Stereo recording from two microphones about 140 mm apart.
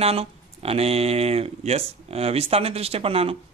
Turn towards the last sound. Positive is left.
turn(degrees=-45)  # may be behind; listen again after turning